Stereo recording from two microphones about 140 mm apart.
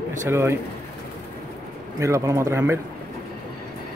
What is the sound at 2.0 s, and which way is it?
Speech, 20° right (ahead or behind).